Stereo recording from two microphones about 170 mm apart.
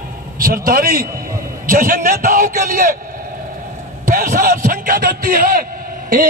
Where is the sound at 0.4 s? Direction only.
60° right (ahead or behind).